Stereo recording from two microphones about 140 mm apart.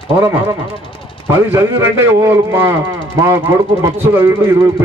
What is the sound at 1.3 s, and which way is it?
A man's voice, 20° right (ahead or behind).